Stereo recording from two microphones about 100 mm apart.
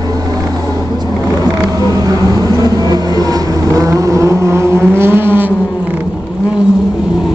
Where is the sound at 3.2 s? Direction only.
35° right (ahead or behind).